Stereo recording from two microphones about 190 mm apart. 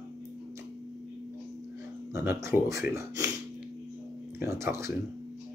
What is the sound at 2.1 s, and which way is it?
Speech, 15° right (ahead or behind).